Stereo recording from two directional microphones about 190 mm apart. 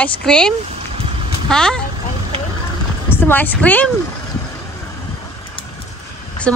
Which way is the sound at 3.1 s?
10° left (ahead or behind).